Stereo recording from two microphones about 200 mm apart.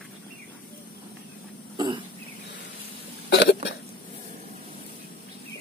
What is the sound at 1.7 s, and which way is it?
Throat clearing, 25° right (ahead or behind).